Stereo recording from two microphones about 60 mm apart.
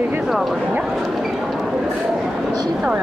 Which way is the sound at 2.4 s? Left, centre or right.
Centre.